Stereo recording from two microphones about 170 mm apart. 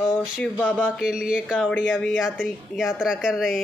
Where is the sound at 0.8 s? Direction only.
5° right (ahead or behind).